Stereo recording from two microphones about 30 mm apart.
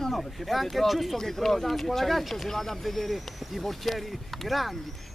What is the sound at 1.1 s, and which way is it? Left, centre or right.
Speech, centre.